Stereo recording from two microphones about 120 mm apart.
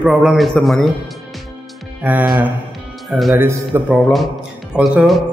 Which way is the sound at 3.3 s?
15° right (ahead or behind).